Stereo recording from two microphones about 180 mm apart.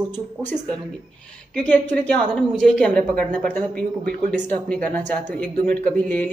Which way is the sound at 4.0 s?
55° right (ahead or behind).